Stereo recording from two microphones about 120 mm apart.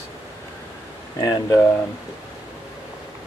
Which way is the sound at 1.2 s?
30° left (ahead or behind).